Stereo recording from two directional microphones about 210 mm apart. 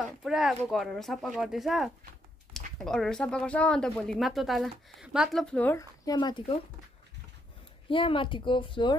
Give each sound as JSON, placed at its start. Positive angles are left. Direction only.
{"t": 0.2, "sound": "speech", "side_deg": 0}
{"t": 7.9, "sound": "speech", "side_deg": 25}